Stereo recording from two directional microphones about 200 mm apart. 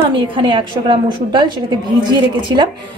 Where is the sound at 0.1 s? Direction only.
25° right (ahead or behind).